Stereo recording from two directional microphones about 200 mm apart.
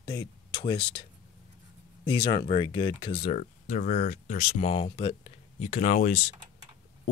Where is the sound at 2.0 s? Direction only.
25° left (ahead or behind).